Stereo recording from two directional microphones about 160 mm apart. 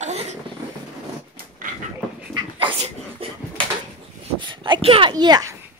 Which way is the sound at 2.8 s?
35° right (ahead or behind).